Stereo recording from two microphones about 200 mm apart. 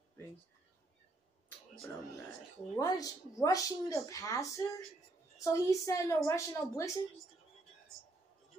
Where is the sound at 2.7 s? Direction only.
15° left (ahead or behind).